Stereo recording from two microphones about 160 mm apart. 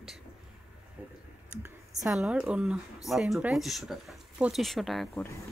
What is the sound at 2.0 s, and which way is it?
Speech, 5° right (ahead or behind).